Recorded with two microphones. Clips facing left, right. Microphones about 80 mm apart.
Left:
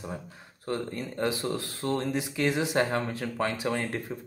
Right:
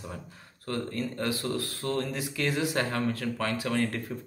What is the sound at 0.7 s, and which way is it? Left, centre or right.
Speech, centre.